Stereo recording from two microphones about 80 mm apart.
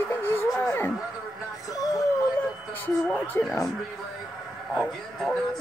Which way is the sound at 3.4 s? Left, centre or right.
Left.